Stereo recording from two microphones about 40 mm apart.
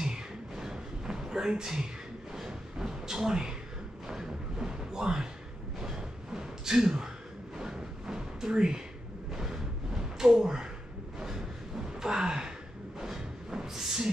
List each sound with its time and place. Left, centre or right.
0.0 s a sound: centre
12.0 s gasp: centre
13.0 s music: centre